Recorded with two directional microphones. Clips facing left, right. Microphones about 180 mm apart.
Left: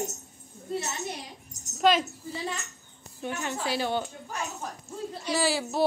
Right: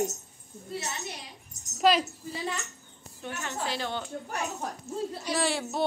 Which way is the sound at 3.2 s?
15° left (ahead or behind).